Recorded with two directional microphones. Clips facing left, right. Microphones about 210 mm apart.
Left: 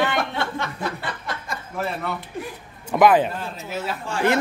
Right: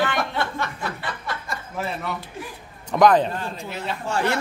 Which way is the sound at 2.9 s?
5° left (ahead or behind).